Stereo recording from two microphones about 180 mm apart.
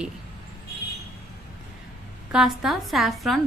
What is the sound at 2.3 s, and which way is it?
A woman's voice, centre (ahead or behind).